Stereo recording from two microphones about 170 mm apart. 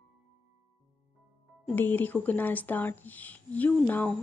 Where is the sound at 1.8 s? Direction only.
10° left (ahead or behind).